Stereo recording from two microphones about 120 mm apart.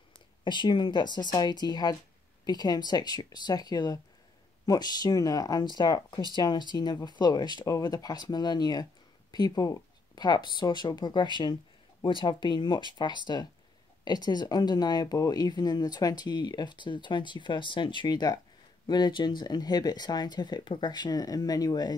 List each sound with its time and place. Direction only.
0.4 s speech: 40° left (ahead or behind)